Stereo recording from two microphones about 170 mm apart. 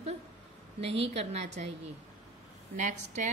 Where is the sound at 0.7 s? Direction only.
35° right (ahead or behind).